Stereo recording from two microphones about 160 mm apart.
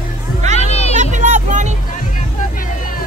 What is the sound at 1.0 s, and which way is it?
Vehicle, 50° right (ahead or behind).